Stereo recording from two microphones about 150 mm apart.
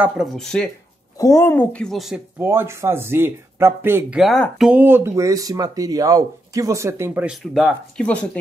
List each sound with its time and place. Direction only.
0.0 s speech: centre (ahead or behind)
1.1 s a woman's voice: 20° left (ahead or behind); by 2.2 s centre (ahead or behind)
2.3 s speech: 15° right (ahead or behind)
4.2 s speech: centre (ahead or behind)
4.7 s speech: 15° right (ahead or behind)
7.2 s speech: centre (ahead or behind)